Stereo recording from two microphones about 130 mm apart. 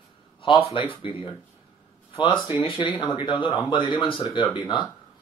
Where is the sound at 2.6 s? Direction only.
45° left (ahead or behind).